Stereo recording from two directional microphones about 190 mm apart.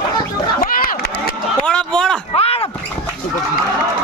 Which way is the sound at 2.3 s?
30° left (ahead or behind).